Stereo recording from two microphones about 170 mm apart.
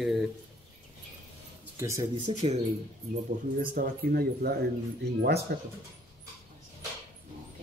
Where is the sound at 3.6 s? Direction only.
60° right (ahead or behind).